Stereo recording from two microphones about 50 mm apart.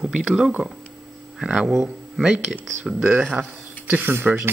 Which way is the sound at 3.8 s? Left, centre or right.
Right.